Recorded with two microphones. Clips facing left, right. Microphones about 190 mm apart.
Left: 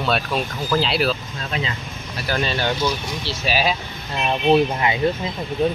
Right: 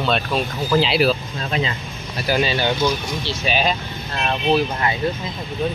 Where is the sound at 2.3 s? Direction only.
5° right (ahead or behind).